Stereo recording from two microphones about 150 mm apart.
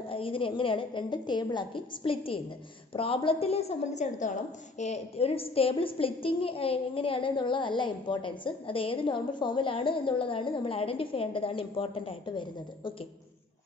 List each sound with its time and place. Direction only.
0.1 s a woman's voice: 35° left (ahead or behind)